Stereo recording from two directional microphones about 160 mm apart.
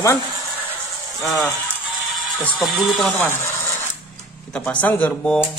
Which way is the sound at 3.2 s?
15° left (ahead or behind).